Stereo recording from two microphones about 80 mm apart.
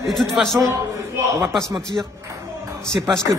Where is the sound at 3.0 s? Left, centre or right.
Centre.